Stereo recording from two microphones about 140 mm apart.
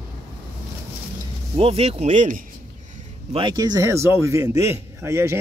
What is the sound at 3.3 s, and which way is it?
A man's voice, 35° right (ahead or behind).